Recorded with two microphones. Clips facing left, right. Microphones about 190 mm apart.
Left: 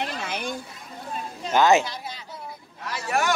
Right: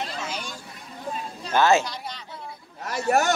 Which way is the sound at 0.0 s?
60° left (ahead or behind).